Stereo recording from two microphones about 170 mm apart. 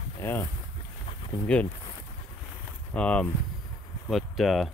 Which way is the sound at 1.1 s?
30° left (ahead or behind).